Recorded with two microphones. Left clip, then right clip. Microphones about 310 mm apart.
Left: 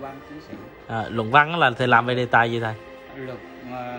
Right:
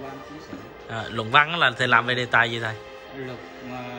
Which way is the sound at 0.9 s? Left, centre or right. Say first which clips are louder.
Left 2 dB; centre.